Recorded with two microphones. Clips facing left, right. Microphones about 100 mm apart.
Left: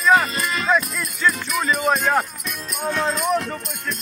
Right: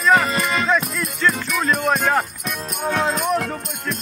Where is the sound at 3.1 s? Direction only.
45° right (ahead or behind).